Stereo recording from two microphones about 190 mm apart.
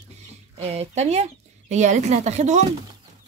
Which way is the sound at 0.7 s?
35° right (ahead or behind).